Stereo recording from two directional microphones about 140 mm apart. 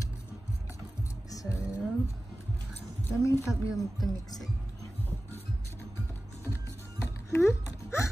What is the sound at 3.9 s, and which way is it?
Speech, 25° left (ahead or behind).